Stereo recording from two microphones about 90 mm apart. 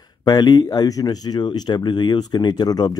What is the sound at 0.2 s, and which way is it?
Speech, 50° left (ahead or behind).